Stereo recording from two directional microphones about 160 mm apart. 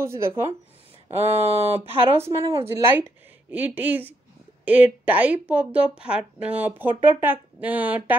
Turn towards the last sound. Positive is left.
turn(degrees=-10)  # may be behind; listen again after turning